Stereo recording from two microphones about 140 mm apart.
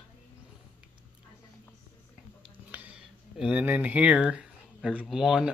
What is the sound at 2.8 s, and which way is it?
Speech, 10° right (ahead or behind).